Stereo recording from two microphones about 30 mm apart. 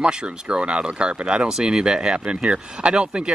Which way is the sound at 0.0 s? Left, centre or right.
Right.